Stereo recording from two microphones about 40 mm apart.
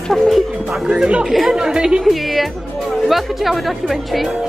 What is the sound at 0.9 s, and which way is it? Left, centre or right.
Speech, right.